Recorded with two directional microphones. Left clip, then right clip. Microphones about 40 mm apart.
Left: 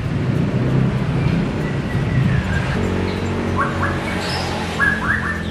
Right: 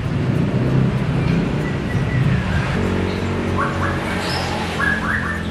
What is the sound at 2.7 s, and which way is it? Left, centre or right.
Music, centre.